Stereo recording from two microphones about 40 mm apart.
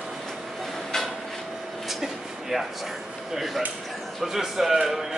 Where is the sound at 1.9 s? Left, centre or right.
Centre.